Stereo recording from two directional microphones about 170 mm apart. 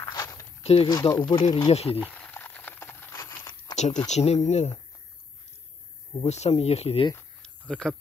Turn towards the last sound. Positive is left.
turn(degrees=5)  # may be behind; listen again after turning